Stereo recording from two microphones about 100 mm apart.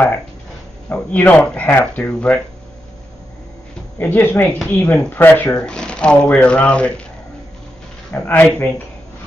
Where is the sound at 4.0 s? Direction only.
20° left (ahead or behind).